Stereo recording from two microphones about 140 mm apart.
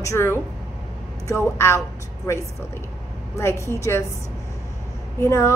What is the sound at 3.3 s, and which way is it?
Speech, 20° left (ahead or behind).